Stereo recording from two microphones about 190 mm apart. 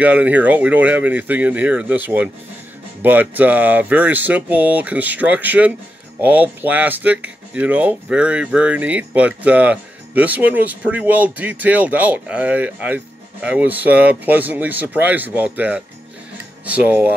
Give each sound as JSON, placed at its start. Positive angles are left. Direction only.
{"t": 0.0, "sound": "speech", "side_deg": -5}